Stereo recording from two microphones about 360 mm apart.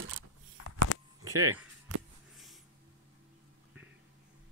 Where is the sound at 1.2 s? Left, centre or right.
Centre.